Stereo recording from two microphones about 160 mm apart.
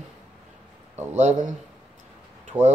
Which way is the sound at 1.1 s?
45° right (ahead or behind).